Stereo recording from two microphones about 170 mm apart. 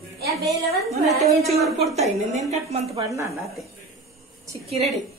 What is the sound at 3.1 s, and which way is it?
Speech, 15° right (ahead or behind).